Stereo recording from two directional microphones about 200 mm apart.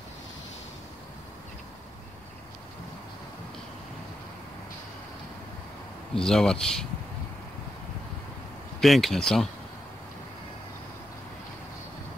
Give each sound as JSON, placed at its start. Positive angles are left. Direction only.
{"t": 6.2, "sound": "speech", "side_deg": 0}
{"t": 8.8, "sound": "speech", "side_deg": 0}